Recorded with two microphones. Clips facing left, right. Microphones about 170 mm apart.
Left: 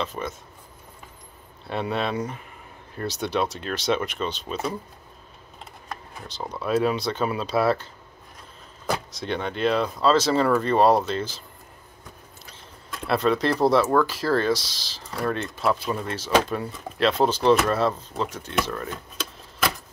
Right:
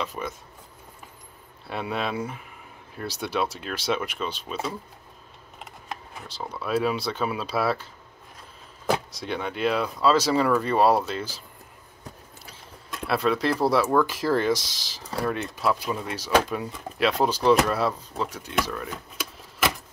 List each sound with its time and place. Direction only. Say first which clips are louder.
0.0 s speech: left 2 dB; 10° right (ahead or behind)
1.7 s speech: left 3 dB; 5° right (ahead or behind)
6.5 s speech: left 2 dB; 5° right (ahead or behind)
9.2 s speech: left 2 dB; 5° right (ahead or behind)
13.0 s speech: left 2 dB; 5° right (ahead or behind)